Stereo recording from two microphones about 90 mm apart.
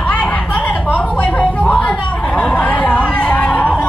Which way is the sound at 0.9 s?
15° left (ahead or behind).